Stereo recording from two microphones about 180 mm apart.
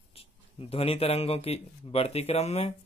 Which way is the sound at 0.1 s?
35° left (ahead or behind).